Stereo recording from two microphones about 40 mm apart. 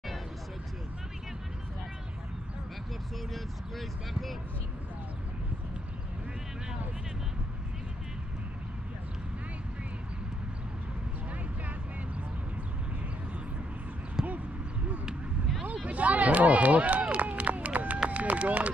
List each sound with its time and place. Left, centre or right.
14.2 s basketball bounce: centre
15.6 s run: right